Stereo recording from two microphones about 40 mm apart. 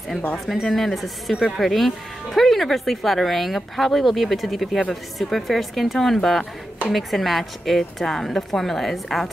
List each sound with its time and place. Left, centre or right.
0.5 s speech: centre